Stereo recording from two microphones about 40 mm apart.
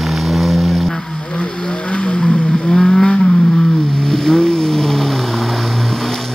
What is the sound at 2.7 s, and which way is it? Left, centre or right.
Vehicle, centre.